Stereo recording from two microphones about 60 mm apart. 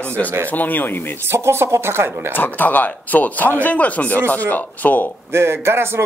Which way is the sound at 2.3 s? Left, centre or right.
Left.